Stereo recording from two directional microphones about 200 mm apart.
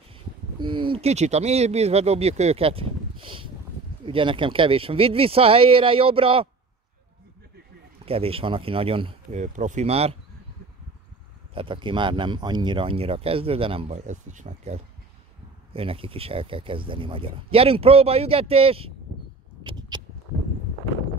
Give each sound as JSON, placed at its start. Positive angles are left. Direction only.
{"t": 0.6, "sound": "speech", "side_deg": -25}
{"t": 8.0, "sound": "speech", "side_deg": -30}
{"t": 9.4, "sound": "speech", "side_deg": -40}
{"t": 11.5, "sound": "speech", "side_deg": -25}
{"t": 19.6, "sound": "a sound", "side_deg": -20}